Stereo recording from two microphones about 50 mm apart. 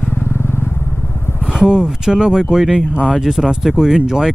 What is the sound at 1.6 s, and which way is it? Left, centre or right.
Speech, centre.